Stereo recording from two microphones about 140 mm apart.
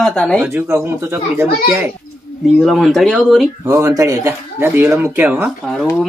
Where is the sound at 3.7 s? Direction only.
20° right (ahead or behind).